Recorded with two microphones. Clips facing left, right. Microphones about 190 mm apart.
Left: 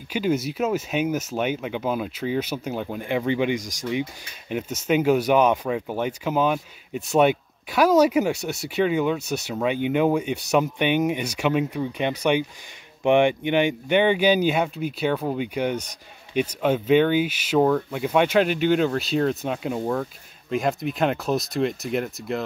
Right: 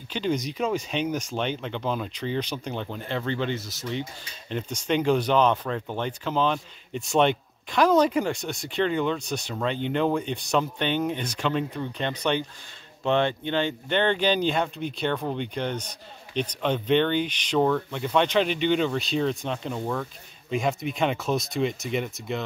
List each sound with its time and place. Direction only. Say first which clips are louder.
0.1 s speech: left 4 dB; 5° left (ahead or behind)
20.4 s speech: left 2 dB; centre (ahead or behind)